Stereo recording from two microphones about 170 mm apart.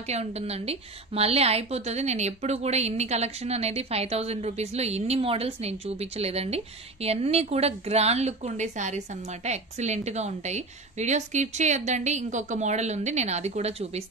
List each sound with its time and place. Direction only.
0.0 s a woman's voice: 40° right (ahead or behind)